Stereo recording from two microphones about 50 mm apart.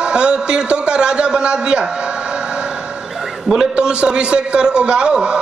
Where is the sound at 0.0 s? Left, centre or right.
Centre.